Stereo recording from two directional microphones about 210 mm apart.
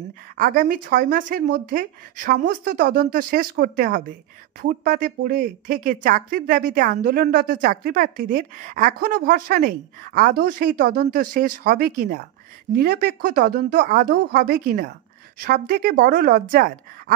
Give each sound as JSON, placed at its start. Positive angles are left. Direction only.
{"t": 0.4, "sound": "a woman's voice", "side_deg": -40}